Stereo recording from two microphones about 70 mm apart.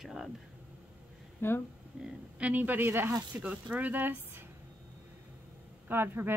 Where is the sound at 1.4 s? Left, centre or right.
Left.